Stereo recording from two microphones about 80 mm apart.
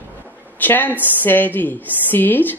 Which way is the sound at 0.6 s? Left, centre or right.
Left.